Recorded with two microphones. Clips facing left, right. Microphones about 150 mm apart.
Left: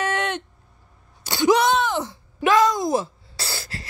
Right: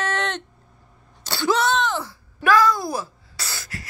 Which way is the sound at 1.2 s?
15° left (ahead or behind).